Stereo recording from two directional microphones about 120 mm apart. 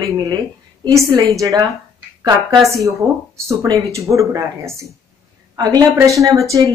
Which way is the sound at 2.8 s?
25° right (ahead or behind).